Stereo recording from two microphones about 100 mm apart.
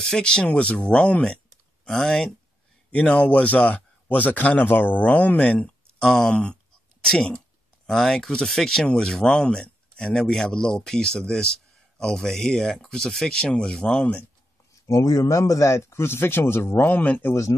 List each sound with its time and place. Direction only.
0.0 s speech: 10° left (ahead or behind)
14.7 s speech: 30° left (ahead or behind)